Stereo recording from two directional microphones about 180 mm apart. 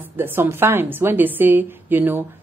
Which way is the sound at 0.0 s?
10° right (ahead or behind).